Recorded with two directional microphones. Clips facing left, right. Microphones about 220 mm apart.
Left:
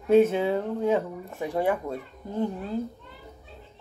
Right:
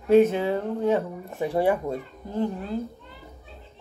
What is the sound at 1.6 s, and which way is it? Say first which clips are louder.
Speech: right 3 dB; 10° right (ahead or behind).